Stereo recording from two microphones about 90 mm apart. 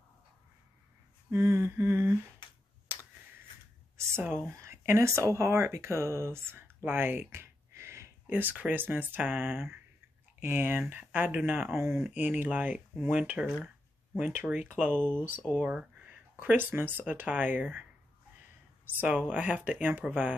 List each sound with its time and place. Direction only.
1.3 s speech: 30° right (ahead or behind)
2.4 s a sound: 60° left (ahead or behind)
2.9 s a sound: 20° right (ahead or behind)
3.9 s a sound: 30° right (ahead or behind)
4.5 s speech: 30° right (ahead or behind)
8.3 s speech: 20° right (ahead or behind)
12.1 s speech: 15° right (ahead or behind)
15.0 s speech: 15° left (ahead or behind)
15.6 s speech: 10° right (ahead or behind)
16.1 s speech: 20° right (ahead or behind)
18.9 s speech: 15° right (ahead or behind)